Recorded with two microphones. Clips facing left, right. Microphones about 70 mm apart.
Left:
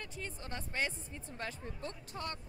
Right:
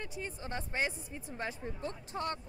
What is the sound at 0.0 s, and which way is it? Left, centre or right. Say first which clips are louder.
Speech: right 3 dB; centre.